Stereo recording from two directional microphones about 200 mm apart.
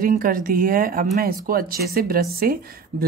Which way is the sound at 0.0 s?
45° right (ahead or behind).